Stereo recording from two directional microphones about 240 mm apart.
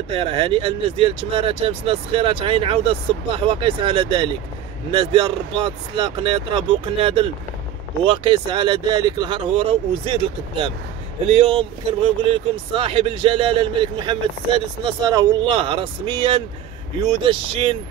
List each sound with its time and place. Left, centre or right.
0.1 s speech: right